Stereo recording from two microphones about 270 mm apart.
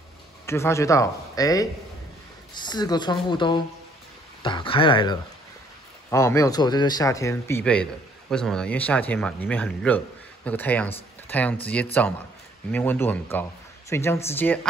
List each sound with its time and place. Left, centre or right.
0.5 s speech: centre